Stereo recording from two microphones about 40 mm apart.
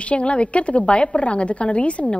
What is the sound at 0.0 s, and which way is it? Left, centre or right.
A man's voice, left.